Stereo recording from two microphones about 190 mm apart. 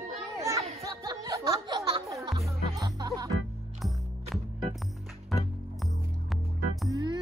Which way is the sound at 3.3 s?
Centre (ahead or behind).